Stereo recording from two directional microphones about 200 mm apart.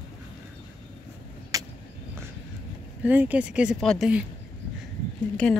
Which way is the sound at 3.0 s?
10° right (ahead or behind).